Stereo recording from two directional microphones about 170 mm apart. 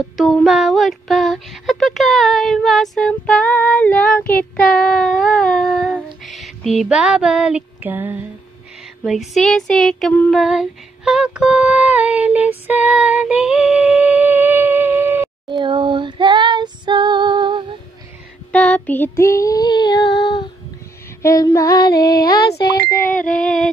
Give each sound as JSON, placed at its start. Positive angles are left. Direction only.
{"t": 0.2, "sound": "child singing", "side_deg": 0}
{"t": 5.9, "sound": "female singing", "side_deg": 0}
{"t": 9.3, "sound": "female singing", "side_deg": 0}
{"t": 15.5, "sound": "female singing", "side_deg": -30}
{"t": 18.5, "sound": "child singing", "side_deg": 10}
{"t": 20.1, "sound": "child singing", "side_deg": 75}
{"t": 21.2, "sound": "female singing", "side_deg": 15}
{"t": 21.9, "sound": "child singing", "side_deg": 65}
{"t": 23.4, "sound": "a sound", "side_deg": 0}